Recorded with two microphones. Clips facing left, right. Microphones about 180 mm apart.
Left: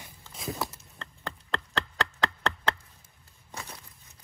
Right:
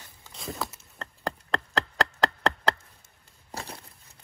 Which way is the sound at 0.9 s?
40° right (ahead or behind).